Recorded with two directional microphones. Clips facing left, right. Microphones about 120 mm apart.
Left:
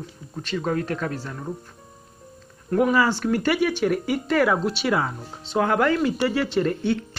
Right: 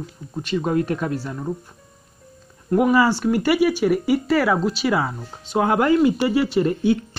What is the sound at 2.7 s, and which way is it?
Speech, 10° right (ahead or behind).